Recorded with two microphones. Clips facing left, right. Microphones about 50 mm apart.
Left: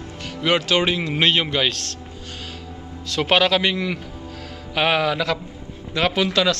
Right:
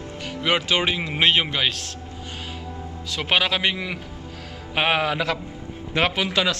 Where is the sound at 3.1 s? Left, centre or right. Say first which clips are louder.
Left 4 dB; centre.